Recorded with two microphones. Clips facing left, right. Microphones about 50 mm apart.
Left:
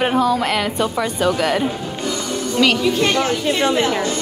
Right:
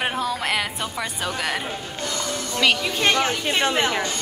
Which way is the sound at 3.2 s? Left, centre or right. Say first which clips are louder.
Left 4 dB; right.